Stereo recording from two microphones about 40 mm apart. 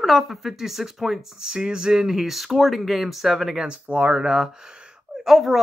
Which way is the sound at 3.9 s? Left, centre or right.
Right.